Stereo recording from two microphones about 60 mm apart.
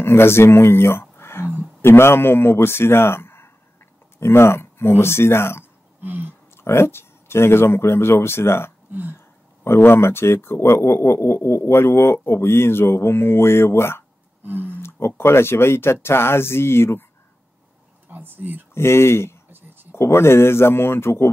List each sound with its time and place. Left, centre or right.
0.0 s a man's voice: left
6.0 s a sound: right
6.5 s a man's voice: left
14.4 s a sound: right
14.8 s a man's voice: left
18.0 s speech: right
18.8 s a man's voice: left